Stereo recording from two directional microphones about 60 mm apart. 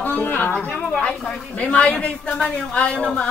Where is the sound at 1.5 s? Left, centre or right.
Left.